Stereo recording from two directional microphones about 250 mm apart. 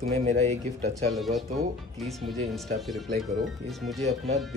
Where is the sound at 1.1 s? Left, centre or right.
Centre.